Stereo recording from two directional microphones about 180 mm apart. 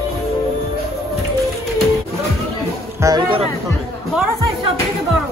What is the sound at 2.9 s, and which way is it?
Chatter, 20° right (ahead or behind).